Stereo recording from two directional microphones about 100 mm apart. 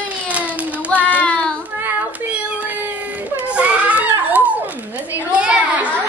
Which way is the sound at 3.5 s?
15° right (ahead or behind).